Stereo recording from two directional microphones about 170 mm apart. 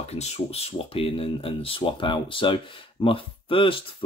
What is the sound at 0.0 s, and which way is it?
Speech, 40° left (ahead or behind).